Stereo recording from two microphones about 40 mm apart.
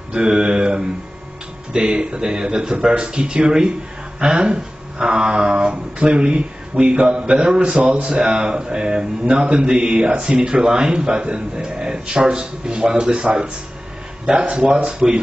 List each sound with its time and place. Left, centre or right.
0.1 s speech: right
10.1 s speech: right
11.6 s speech: centre
14.9 s speech: right